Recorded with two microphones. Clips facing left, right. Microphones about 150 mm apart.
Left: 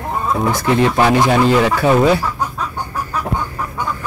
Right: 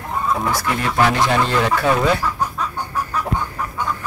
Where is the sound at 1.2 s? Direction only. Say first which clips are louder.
Left 5 dB; 10° left (ahead or behind).